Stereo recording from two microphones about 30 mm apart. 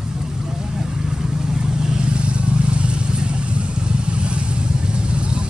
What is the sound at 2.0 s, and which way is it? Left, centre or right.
Vehicle, right.